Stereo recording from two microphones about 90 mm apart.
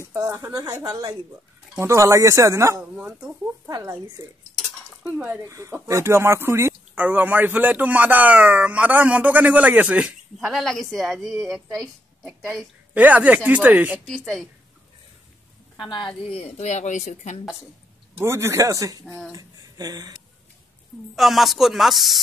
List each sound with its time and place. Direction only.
0.3 s speech: 35° right (ahead or behind)
3.0 s speech: 15° right (ahead or behind)
3.6 s speech: 30° right (ahead or behind)
5.4 s speech: 35° right (ahead or behind); by 10.6 s 5° right (ahead or behind)
10.6 s a woman's voice: 5° left (ahead or behind)
12.9 s speech: 15° right (ahead or behind)
14.0 s a woman's voice: 5° left (ahead or behind)
15.8 s speech: 60° left (ahead or behind); by 16.4 s 80° left
18.2 s speech: 30° right (ahead or behind); by 20.1 s 45° right (ahead or behind)
21.2 s a woman's voice: centre (ahead or behind)